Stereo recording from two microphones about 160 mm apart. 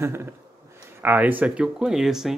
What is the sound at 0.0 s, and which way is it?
Speech, 15° right (ahead or behind).